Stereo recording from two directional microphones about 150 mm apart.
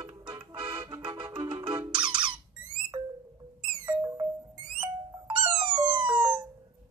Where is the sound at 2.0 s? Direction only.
35° right (ahead or behind).